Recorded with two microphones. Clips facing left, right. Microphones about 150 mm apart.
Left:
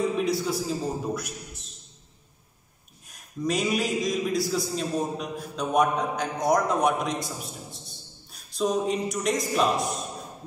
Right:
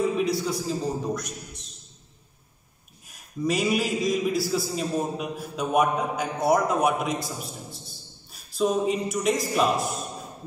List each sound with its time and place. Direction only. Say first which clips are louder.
0.2 s a man's voice: even; centre (ahead or behind)
3.1 s a man's voice: right 1 dB; centre (ahead or behind)